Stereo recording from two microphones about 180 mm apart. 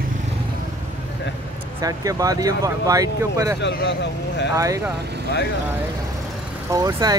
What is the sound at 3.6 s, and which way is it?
Speech, 70° left (ahead or behind).